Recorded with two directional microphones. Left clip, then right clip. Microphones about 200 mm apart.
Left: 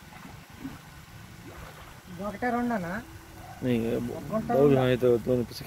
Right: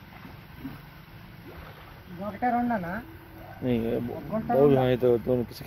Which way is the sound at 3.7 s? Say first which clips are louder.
Right 1 dB; 15° left (ahead or behind).